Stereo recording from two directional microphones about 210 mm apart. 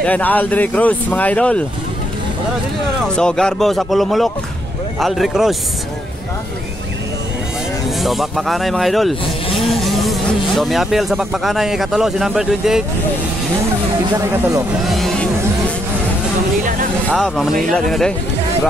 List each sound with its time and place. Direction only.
0.0 s speech: 5° left (ahead or behind)
3.1 s speech: 5° left (ahead or behind)
8.0 s speech: centre (ahead or behind)
14.1 s speech: 15° right (ahead or behind)
14.9 s vehicle: centre (ahead or behind)
17.1 s speech: centre (ahead or behind)